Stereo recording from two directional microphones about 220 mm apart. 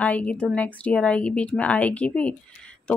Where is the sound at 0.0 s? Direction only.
5° left (ahead or behind).